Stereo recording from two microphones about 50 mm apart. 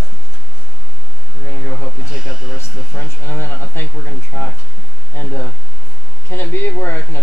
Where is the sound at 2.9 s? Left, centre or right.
Left.